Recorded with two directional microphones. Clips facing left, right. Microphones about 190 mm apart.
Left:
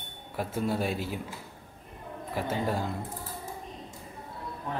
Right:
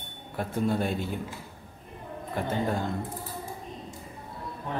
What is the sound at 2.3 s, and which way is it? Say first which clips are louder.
Speech: right 1 dB; 5° left (ahead or behind).